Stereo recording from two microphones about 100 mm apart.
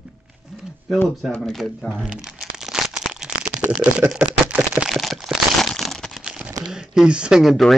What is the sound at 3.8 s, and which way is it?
Typing, 10° right (ahead or behind).